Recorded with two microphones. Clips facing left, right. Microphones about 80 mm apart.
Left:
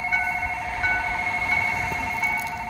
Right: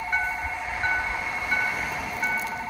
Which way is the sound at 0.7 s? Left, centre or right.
Centre.